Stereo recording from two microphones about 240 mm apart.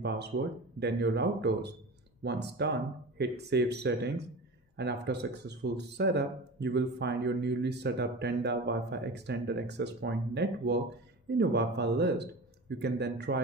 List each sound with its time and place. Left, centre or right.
0.0 s speech: right